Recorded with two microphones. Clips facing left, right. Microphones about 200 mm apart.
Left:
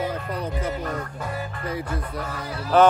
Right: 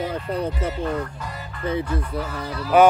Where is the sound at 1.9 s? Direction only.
45° left (ahead or behind).